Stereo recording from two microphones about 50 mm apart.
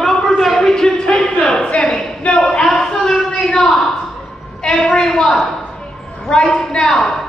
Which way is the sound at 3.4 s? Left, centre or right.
Centre.